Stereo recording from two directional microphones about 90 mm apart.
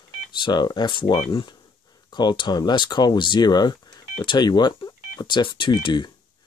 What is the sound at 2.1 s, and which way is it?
Speech, 55° left (ahead or behind).